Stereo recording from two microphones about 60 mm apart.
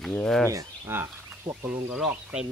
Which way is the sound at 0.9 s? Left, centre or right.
Right.